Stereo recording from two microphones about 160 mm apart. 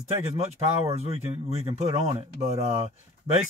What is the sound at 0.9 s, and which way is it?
Speech, 40° right (ahead or behind).